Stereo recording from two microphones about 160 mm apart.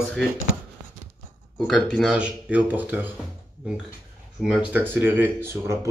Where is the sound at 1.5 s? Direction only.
5° left (ahead or behind).